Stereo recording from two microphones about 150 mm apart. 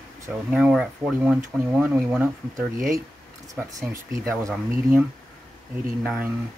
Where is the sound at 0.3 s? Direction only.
5° right (ahead or behind).